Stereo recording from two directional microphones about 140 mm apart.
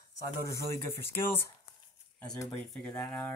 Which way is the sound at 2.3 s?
20° left (ahead or behind).